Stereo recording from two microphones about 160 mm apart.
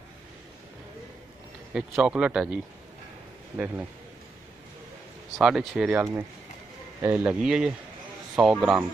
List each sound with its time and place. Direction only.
1.7 s a man's voice: centre (ahead or behind)
5.4 s a man's voice: centre (ahead or behind)